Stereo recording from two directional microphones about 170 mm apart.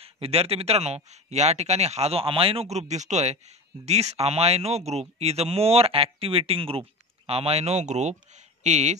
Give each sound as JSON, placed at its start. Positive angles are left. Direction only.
{"t": 0.0, "sound": "speech", "side_deg": -35}